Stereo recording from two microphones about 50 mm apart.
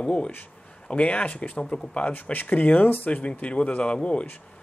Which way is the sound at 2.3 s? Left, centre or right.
Left.